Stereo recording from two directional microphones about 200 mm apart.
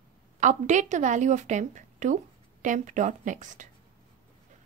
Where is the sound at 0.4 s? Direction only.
40° right (ahead or behind).